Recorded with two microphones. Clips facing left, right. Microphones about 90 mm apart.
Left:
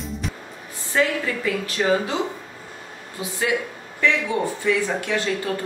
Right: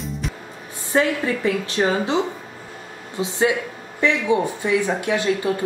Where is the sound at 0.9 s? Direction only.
30° right (ahead or behind).